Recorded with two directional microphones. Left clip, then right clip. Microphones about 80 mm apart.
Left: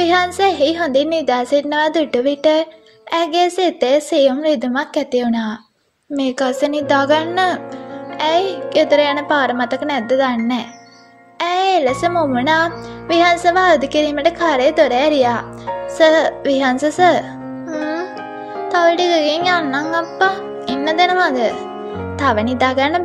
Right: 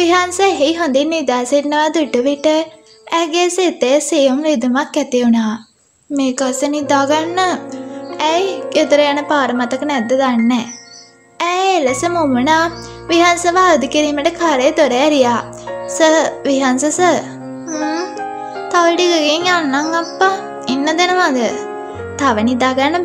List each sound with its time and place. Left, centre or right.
0.0 s speech: left
6.1 s a woman's voice: left
8.2 s speech: left
17.7 s music: centre
18.7 s speech: left